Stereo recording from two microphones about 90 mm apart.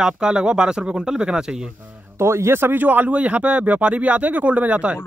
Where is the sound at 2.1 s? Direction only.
30° right (ahead or behind); by 4.9 s 15° right (ahead or behind).